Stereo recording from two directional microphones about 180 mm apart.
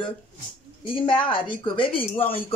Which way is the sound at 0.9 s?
30° left (ahead or behind).